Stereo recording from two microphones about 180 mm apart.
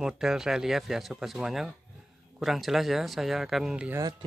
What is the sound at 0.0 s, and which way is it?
Speech, 5° right (ahead or behind).